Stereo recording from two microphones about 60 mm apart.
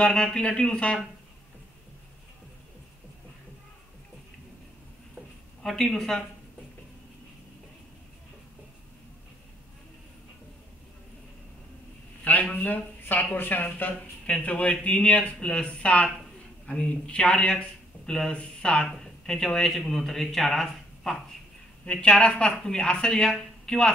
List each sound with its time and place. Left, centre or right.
0.0 s speech: centre
5.6 s speech: centre
12.5 s speech: left; by 20.6 s centre
21.9 s speech: centre